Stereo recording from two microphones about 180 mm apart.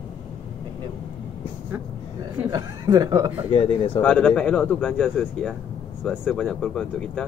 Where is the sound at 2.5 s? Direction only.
25° right (ahead or behind).